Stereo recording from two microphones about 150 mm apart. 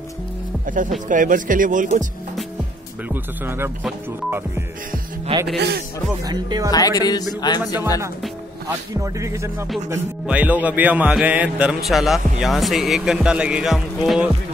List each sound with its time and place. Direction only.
0.7 s speech: 60° right (ahead or behind)
3.1 s speech: 15° right (ahead or behind)
5.6 s speech: 90° right
6.2 s speech: 25° right (ahead or behind)
6.7 s music: 25° left (ahead or behind)
8.6 s speech: 20° right (ahead or behind); by 14.3 s centre (ahead or behind)